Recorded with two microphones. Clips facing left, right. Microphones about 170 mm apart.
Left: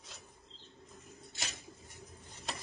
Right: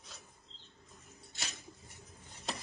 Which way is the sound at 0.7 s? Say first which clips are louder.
Left 4 dB; 15° left (ahead or behind).